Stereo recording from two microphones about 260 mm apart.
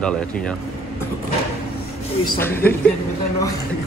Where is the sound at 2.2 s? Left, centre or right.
Centre.